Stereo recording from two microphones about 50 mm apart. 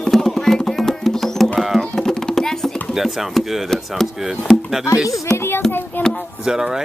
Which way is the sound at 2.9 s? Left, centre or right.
Centre.